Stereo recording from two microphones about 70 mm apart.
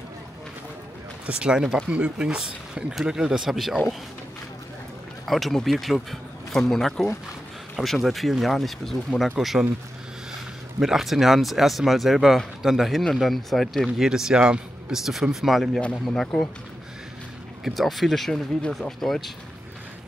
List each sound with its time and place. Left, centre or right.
1.2 s speech: centre
5.2 s speech: centre
10.8 s speech: centre
14.0 s speech: centre
15.8 s speech: centre
17.6 s speech: centre